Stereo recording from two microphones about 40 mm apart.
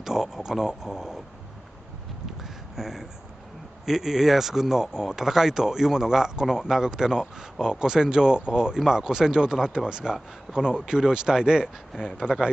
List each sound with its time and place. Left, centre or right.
0.0 s speech: centre
2.2 s a sound: centre
3.8 s speech: centre
12.2 s speech: right